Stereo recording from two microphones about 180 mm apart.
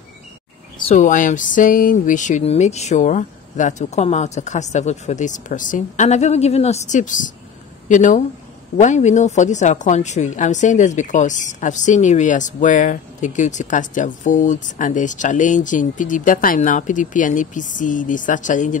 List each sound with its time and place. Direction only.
0.9 s a woman's voice: 45° left (ahead or behind)